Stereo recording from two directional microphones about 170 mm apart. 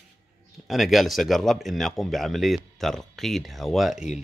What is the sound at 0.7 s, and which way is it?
Speech, centre (ahead or behind).